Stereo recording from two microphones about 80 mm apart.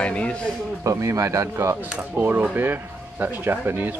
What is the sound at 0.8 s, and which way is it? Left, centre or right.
Speech, right.